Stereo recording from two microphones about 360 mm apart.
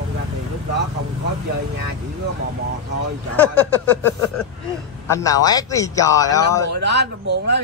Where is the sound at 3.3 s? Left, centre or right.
Centre.